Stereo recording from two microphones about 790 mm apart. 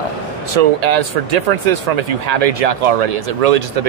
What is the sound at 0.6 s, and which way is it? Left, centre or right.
Speech, right.